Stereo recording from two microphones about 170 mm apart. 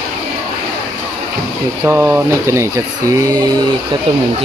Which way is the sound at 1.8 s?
10° right (ahead or behind).